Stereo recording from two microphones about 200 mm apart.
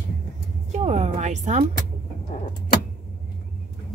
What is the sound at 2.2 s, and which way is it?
Vehicle, 40° left (ahead or behind).